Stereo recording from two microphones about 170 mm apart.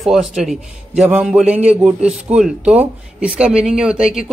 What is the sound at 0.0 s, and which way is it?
A man's voice, centre (ahead or behind).